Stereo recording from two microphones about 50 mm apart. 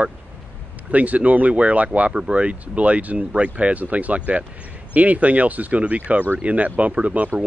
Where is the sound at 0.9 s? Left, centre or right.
Right.